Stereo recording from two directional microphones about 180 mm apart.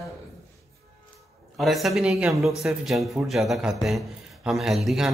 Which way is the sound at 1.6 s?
Centre (ahead or behind).